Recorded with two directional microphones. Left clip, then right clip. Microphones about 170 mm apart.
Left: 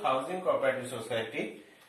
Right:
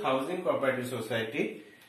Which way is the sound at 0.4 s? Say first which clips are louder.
Even; centre (ahead or behind).